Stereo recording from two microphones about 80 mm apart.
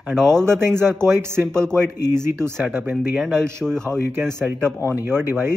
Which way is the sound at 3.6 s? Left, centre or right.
Centre.